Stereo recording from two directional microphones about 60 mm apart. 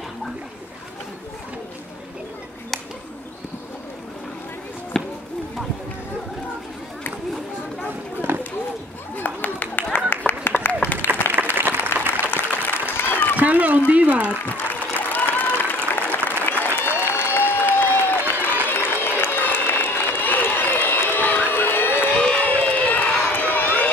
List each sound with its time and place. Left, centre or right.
4.9 s basketball bounce: centre
8.2 s run: right
9.1 s a sound: left
11.5 s applause: right
11.9 s a sound: left
13.4 s a sound: right
14.5 s applause: left
16.4 s applause: left
21.5 s crowd: left
22.1 s crowd: centre
23.1 s run: left